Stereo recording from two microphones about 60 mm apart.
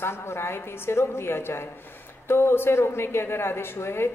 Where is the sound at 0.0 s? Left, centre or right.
Left.